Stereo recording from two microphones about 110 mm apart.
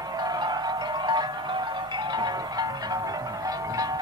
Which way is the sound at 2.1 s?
40° right (ahead or behind).